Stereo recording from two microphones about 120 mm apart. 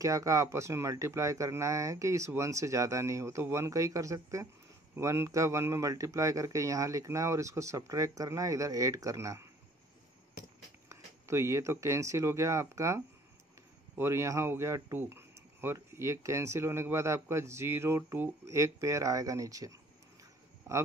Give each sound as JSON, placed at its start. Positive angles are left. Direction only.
{"t": 0.0, "sound": "speech", "side_deg": -30}
{"t": 10.9, "sound": "speech", "side_deg": -25}